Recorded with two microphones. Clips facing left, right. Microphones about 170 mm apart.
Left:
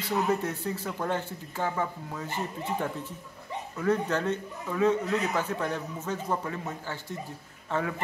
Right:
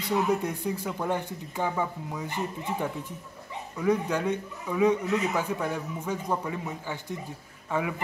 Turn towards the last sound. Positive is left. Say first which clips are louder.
# right 1 dB
turn(degrees=-10)  # may be behind; listen again after turning